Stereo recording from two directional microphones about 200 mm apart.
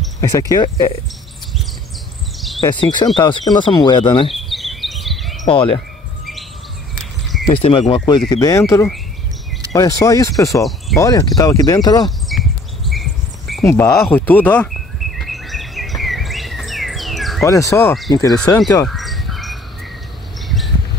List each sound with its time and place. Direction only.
0.2 s speech: 15° left (ahead or behind)
2.6 s speech: 20° left (ahead or behind)
4.4 s a sound: centre (ahead or behind)
5.5 s speech: 25° left (ahead or behind)
7.5 s speech: 30° left (ahead or behind)
10.5 s speech: centre (ahead or behind)
11.0 s speech: 15° left (ahead or behind)
12.3 s a sound: centre (ahead or behind)
13.7 s bird: 10° left (ahead or behind)
17.5 s speech: 15° left (ahead or behind)
18.9 s bird: centre (ahead or behind)
20.4 s a sound: centre (ahead or behind)